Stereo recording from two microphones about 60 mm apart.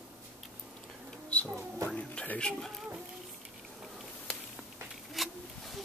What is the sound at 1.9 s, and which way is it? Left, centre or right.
Music, left.